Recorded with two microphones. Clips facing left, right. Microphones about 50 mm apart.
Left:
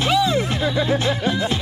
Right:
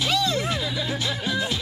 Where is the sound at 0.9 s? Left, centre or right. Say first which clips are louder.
Left 6 dB; left.